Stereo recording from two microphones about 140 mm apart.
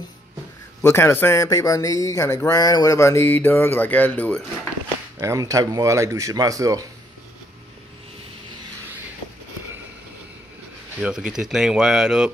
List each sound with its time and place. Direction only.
0.8 s speech: 15° left (ahead or behind)
5.2 s speech: 20° right (ahead or behind)
11.0 s speech: 5° right (ahead or behind)